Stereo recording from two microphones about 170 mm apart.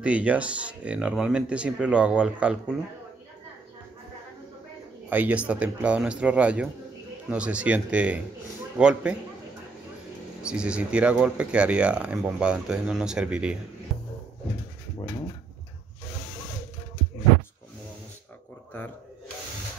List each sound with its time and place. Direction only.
0.0 s speech: 10° right (ahead or behind)
5.1 s speech: 10° right (ahead or behind)
10.4 s speech: 5° right (ahead or behind)